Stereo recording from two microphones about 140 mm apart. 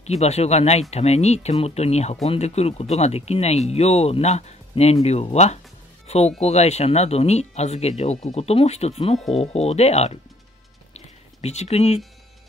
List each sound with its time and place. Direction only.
0.0 s speech: 50° left (ahead or behind)
11.4 s speech: 50° left (ahead or behind)